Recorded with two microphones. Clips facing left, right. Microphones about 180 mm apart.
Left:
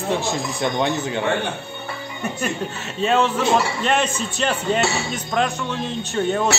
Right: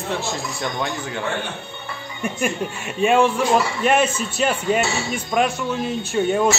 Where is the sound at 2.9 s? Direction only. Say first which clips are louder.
Right 2 dB; 10° right (ahead or behind).